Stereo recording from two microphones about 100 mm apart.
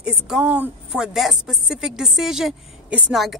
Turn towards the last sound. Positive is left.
turn(degrees=0)  # may be behind; listen again after turning